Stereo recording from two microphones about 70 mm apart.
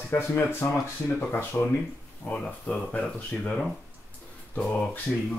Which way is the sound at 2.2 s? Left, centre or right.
Centre.